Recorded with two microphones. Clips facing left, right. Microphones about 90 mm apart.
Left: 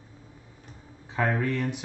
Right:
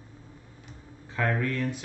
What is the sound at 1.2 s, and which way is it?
Speech, 20° left (ahead or behind).